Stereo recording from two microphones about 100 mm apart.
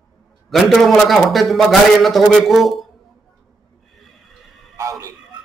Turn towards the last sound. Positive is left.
turn(degrees=-30)  # may be behind; listen again after turning